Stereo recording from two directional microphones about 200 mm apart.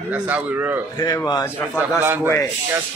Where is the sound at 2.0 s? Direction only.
10° right (ahead or behind).